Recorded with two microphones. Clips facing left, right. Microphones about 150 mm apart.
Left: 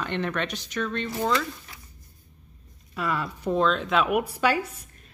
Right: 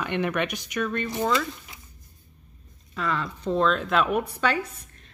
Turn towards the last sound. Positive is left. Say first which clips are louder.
# left 1 dB
turn(degrees=10)  # may be behind; listen again after turning